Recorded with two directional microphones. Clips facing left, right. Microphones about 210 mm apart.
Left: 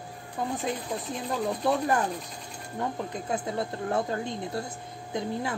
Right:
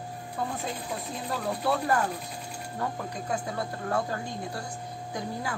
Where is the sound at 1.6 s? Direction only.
20° left (ahead or behind).